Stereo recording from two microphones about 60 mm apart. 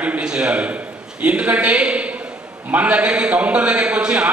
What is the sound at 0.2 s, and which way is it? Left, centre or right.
A man's voice, centre.